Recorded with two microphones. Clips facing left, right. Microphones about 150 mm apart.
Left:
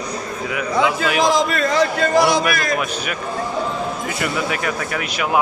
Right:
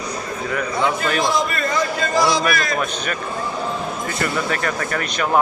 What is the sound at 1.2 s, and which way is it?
A man's voice, 90° left.